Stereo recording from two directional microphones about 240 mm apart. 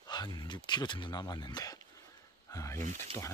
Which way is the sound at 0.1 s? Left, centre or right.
Centre.